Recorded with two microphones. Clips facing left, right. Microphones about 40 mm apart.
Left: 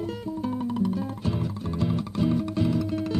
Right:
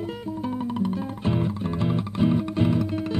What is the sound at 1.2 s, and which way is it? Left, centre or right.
Music, right.